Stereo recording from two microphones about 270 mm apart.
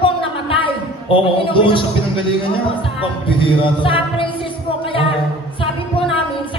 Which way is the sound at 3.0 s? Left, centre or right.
Centre.